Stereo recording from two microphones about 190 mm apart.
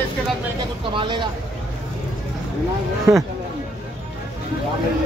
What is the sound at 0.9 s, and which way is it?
Speech, 25° right (ahead or behind).